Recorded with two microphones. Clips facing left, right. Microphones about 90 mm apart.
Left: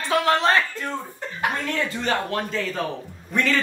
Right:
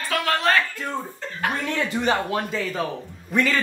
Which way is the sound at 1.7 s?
15° right (ahead or behind).